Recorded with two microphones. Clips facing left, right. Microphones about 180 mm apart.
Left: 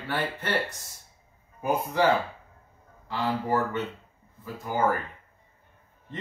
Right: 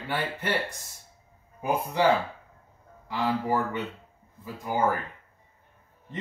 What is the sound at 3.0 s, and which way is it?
Speech, 10° right (ahead or behind).